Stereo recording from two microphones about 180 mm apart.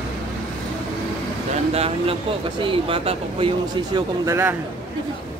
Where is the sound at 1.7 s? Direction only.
35° right (ahead or behind); by 4.6 s 15° right (ahead or behind).